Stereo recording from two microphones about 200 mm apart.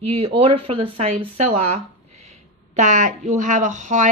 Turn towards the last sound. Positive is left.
turn(degrees=-35)  # may be behind; listen again after turning